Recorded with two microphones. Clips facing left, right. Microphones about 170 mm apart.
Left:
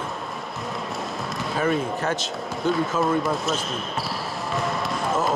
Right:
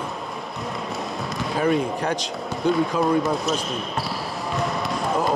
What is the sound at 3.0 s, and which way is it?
Speech, centre (ahead or behind).